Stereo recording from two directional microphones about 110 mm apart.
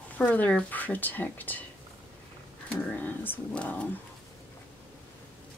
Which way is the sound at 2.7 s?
10° left (ahead or behind).